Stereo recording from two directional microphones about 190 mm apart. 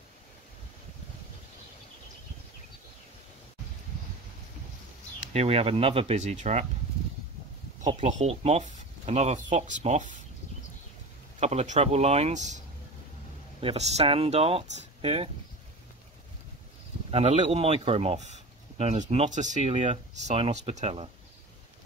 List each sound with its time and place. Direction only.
5.3 s speech: 30° right (ahead or behind)
8.0 s speech: 35° right (ahead or behind)
11.3 s speech: 35° right (ahead or behind)
17.1 s speech: 35° right (ahead or behind)